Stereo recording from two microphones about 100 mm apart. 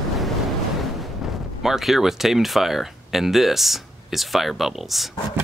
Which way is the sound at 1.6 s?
5° right (ahead or behind).